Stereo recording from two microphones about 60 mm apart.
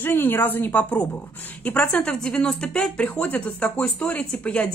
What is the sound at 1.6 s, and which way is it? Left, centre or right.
Speech, left.